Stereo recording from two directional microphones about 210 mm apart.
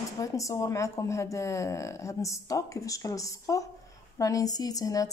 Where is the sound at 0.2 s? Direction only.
15° left (ahead or behind).